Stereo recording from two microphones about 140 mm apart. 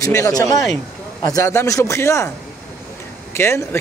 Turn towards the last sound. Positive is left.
turn(degrees=20)  # may be behind; listen again after turning